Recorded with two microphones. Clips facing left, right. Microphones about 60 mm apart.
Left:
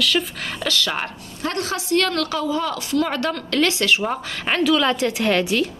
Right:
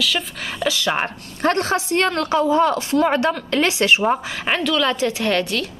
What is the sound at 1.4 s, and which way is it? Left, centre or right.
Speech, right.